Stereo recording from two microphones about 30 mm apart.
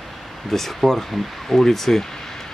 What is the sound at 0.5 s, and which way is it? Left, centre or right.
Speech, centre.